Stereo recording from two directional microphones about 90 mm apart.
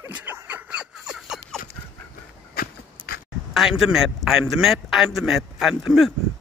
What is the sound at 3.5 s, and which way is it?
A man's voice, 5° right (ahead or behind).